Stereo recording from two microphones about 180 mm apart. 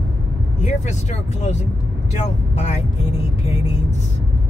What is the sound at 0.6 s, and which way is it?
Speech, 40° left (ahead or behind).